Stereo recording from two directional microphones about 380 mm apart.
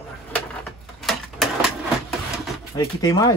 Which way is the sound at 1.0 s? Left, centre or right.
Centre.